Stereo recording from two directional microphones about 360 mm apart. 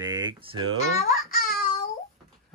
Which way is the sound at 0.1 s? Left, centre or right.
Centre.